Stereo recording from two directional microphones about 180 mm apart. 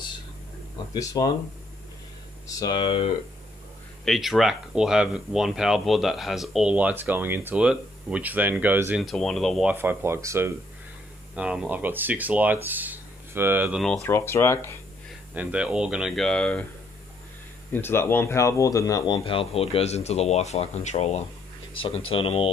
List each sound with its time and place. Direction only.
0.9 s speech: 20° left (ahead or behind)
2.4 s speech: 25° left (ahead or behind)
4.0 s speech: centre (ahead or behind)
9.0 s speech: 5° left (ahead or behind)
9.8 s speech: 15° right (ahead or behind)
14.0 s speech: 15° left (ahead or behind)
15.3 s speech: 5° right (ahead or behind)
17.7 s speech: 10° left (ahead or behind); by 22.5 s 30° left (ahead or behind)